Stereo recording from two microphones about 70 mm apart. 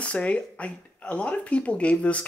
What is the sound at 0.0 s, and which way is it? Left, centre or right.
Speech, centre.